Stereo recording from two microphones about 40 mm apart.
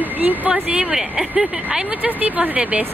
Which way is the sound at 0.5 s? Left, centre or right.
Right.